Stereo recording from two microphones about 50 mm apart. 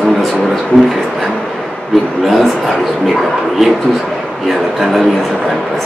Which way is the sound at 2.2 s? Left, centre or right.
Centre.